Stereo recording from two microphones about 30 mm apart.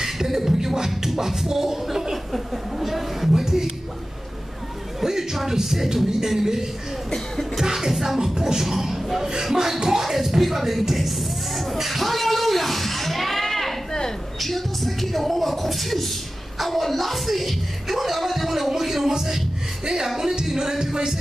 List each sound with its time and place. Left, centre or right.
0.0 s beatboxing: centre
2.3 s speech: centre
3.4 s beatboxing: centre
5.0 s beatboxing: centre
8.2 s speech: right
8.6 s beatboxing: centre
9.8 s music: centre
14.4 s speech: centre
20.2 s beatboxing: centre